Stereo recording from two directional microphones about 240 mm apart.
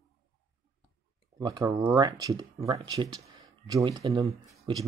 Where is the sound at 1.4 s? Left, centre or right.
Centre.